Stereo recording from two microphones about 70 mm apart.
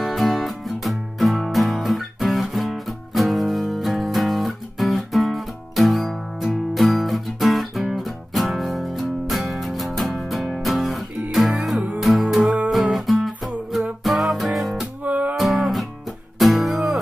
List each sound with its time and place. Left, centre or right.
0.0 s music: centre
15.0 s music: right
15.3 s music: centre